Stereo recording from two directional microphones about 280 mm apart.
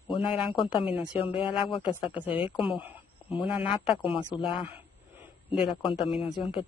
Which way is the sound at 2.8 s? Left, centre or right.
Centre.